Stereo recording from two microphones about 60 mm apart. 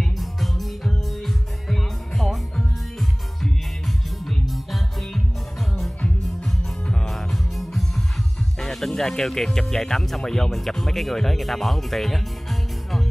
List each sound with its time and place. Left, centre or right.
0.0 s music: centre
7.1 s music: centre
8.5 s speech: centre